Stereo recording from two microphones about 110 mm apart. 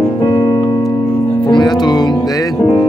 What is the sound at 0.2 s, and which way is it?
Music, 45° left (ahead or behind).